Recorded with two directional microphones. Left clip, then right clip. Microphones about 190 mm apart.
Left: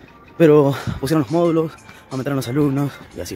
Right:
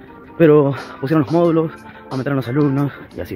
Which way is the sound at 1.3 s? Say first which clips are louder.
Right 2 dB; 10° left (ahead or behind).